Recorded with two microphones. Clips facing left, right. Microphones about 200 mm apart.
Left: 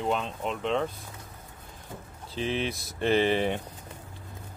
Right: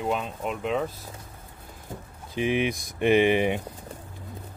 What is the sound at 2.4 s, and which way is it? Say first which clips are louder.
Speech: right 5 dB; 15° right (ahead or behind).